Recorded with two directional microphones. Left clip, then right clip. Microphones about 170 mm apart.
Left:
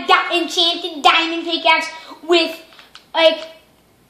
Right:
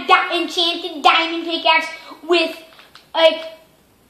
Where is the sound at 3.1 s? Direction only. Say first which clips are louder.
Even; 40° left (ahead or behind).